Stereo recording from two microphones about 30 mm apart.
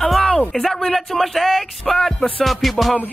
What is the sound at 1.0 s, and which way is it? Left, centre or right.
Speech, centre.